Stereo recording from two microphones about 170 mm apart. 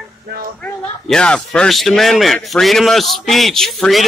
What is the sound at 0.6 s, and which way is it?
Speech, 5° left (ahead or behind).